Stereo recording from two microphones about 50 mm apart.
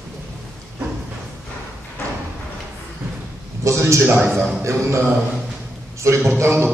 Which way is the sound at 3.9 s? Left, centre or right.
Right.